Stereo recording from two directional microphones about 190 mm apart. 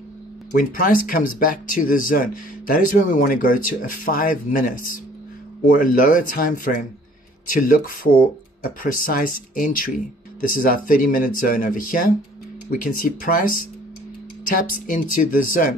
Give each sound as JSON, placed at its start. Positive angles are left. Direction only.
{"t": 0.5, "sound": "speech", "side_deg": 45}